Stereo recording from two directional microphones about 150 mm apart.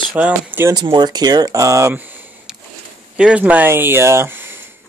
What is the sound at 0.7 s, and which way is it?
Speech, 30° right (ahead or behind).